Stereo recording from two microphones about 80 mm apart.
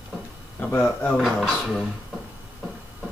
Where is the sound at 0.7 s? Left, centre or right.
Centre.